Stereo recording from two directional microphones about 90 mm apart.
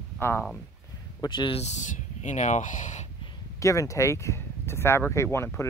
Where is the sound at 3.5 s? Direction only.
35° left (ahead or behind).